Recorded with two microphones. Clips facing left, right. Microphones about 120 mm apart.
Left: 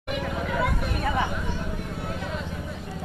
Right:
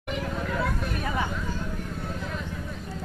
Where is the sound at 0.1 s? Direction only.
5° left (ahead or behind).